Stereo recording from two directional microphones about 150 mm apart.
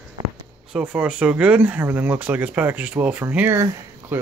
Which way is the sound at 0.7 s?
10° right (ahead or behind).